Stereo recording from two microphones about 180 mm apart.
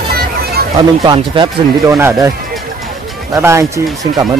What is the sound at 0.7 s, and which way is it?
Speech, 20° right (ahead or behind).